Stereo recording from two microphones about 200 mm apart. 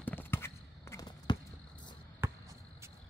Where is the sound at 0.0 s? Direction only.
10° left (ahead or behind).